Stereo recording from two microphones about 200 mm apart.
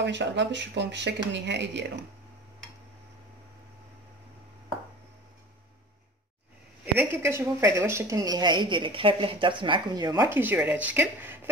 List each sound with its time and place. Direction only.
0.0 s speech: 60° right (ahead or behind)
7.0 s a woman's voice: 10° right (ahead or behind)